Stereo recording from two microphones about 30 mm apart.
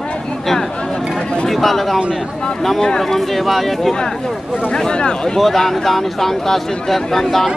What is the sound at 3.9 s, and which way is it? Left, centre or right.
Speech, left.